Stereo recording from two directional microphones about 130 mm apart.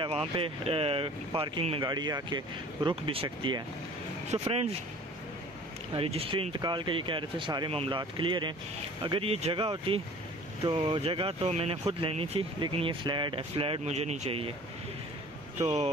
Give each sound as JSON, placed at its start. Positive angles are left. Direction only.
{"t": 0.0, "sound": "speech", "side_deg": -45}
{"t": 1.9, "sound": "speech", "side_deg": -30}
{"t": 5.9, "sound": "speech", "side_deg": -50}